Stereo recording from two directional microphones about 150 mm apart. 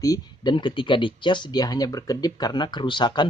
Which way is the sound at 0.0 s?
25° left (ahead or behind).